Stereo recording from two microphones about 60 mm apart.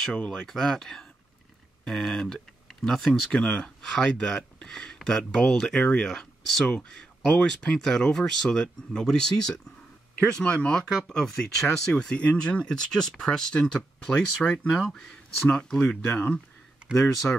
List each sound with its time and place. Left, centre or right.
0.1 s speech: left
0.5 s speech: centre
3.1 s speech: centre
6.7 s speech: centre
14.7 s speech: centre; by 16.3 s left